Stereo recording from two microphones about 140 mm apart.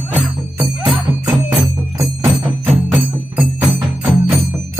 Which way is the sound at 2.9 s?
10° right (ahead or behind).